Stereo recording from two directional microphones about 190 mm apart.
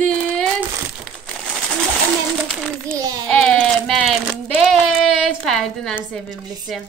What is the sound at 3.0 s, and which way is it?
Speech, 20° right (ahead or behind).